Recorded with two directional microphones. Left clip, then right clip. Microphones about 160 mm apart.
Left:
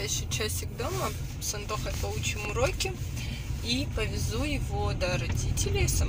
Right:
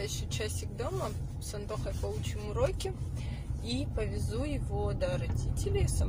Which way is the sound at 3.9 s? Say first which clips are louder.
Left 4 dB; 15° right (ahead or behind).